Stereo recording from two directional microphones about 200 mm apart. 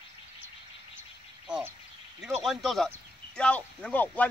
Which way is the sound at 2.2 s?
Centre (ahead or behind).